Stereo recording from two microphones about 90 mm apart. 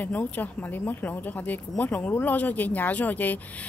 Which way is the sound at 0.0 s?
20° left (ahead or behind).